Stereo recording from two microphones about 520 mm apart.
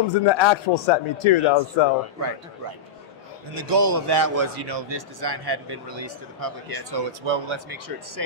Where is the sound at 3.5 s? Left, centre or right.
Right.